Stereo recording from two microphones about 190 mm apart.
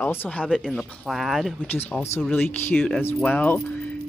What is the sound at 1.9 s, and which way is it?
Speech, 10° left (ahead or behind).